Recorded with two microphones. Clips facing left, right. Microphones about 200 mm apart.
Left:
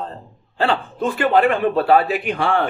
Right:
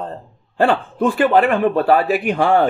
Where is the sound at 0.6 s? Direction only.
50° right (ahead or behind).